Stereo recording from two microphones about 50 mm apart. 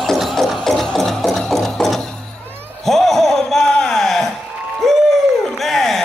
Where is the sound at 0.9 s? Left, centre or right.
Centre.